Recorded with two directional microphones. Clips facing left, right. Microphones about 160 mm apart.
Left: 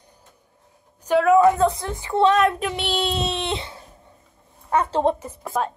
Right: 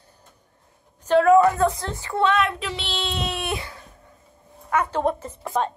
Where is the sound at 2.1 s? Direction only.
35° left (ahead or behind).